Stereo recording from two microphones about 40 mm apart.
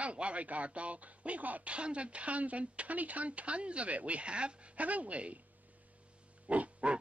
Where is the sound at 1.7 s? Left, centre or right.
Right.